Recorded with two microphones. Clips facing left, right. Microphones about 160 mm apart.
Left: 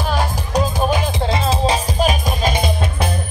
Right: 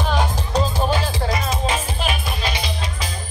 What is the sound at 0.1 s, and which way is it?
Music, 10° left (ahead or behind).